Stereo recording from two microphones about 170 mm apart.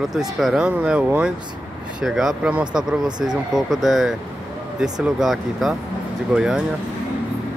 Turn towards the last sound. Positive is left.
turn(degrees=-5)  # may be behind; listen again after turning